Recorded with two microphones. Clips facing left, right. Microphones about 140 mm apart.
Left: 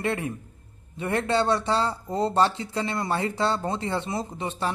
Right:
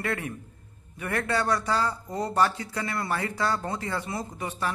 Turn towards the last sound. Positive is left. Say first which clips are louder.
# left 2 dB
turn(degrees=25)  # may be behind; listen again after turning